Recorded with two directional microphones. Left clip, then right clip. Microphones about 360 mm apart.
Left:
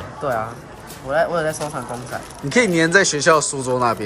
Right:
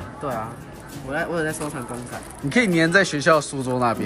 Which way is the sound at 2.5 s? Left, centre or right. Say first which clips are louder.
Left 3 dB; centre.